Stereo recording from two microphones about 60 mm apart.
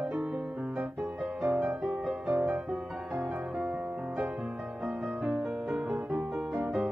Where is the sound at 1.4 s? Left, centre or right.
Centre.